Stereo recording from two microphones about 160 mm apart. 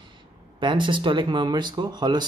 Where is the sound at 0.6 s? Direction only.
30° right (ahead or behind).